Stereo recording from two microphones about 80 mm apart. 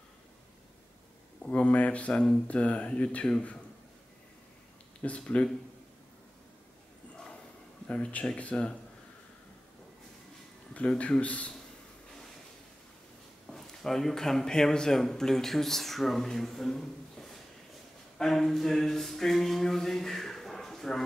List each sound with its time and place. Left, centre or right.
1.4 s speech: centre
5.0 s speech: centre
7.9 s speech: centre
10.7 s speech: centre
13.5 s speech: centre
18.1 s a sound: centre